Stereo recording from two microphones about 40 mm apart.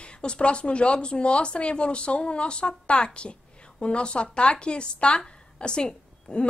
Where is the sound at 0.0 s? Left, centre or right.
Left.